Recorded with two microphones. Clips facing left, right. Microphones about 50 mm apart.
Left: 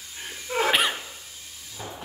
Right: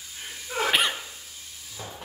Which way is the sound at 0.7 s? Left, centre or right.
Centre.